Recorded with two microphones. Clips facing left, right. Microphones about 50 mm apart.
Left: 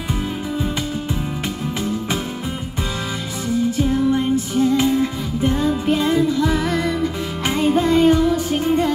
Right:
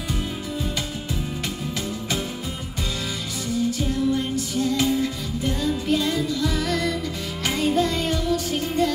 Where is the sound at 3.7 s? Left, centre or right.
Left.